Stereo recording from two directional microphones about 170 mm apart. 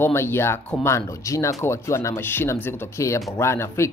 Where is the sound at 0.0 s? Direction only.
15° left (ahead or behind).